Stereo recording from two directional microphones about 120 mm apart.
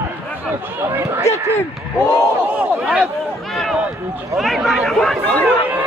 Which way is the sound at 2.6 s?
5° right (ahead or behind).